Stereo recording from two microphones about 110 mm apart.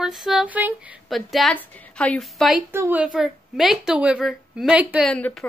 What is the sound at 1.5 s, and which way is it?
A woman's voice, 10° left (ahead or behind).